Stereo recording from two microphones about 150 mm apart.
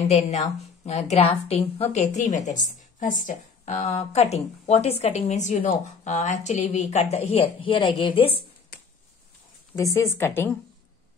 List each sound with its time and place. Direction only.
0.1 s a woman's voice: 45° left (ahead or behind)
9.8 s a woman's voice: 20° left (ahead or behind)